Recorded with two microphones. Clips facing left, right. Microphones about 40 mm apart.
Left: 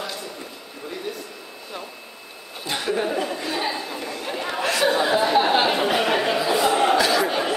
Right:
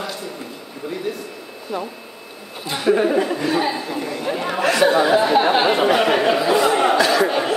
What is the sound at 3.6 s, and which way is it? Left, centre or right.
Chatter, centre.